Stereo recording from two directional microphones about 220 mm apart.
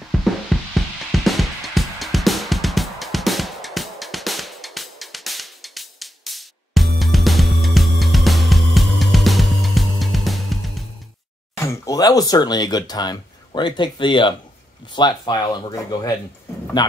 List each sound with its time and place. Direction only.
0.2 s music: centre (ahead or behind)
11.5 s speech: 15° left (ahead or behind)